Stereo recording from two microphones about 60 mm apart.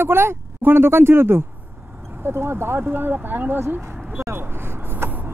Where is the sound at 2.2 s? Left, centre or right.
Right.